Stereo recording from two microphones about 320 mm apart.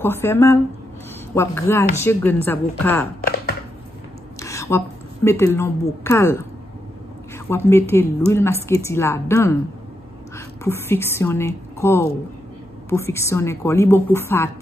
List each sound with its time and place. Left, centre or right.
0.0 s a woman's voice: centre
3.2 s a sound: left
4.4 s speech: centre
7.4 s a woman's voice: centre